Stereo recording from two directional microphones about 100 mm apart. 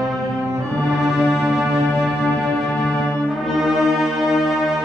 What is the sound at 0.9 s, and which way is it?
Music, 5° right (ahead or behind).